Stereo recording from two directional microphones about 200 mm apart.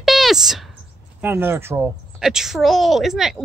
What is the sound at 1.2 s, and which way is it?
A woman's voice, 10° right (ahead or behind).